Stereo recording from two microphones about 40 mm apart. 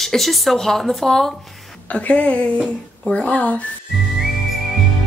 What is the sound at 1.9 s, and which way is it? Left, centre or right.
A woman's voice, left.